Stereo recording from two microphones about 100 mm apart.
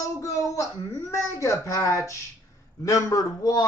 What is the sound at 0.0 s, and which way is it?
A man's voice, 35° left (ahead or behind).